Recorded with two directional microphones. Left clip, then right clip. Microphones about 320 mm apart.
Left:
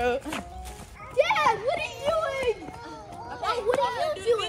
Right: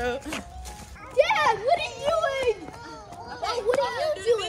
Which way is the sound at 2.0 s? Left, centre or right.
Right.